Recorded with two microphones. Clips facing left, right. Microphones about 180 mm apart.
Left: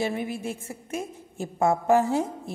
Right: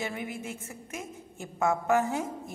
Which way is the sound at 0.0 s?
30° left (ahead or behind).